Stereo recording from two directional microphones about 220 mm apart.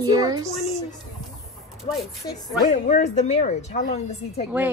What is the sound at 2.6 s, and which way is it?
A woman's voice, 35° left (ahead or behind).